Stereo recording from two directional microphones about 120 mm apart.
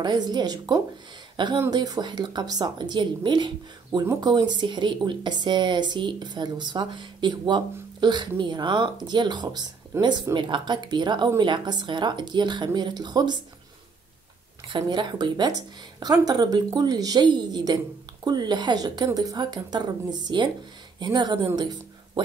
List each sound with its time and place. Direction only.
0.0 s speech: 35° right (ahead or behind)
14.7 s speech: 40° right (ahead or behind)
21.5 s music: 35° right (ahead or behind)